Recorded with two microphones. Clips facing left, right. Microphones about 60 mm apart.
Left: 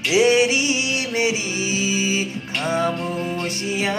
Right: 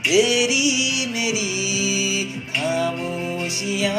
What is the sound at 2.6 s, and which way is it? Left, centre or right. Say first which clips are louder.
Music: left 1 dB; left.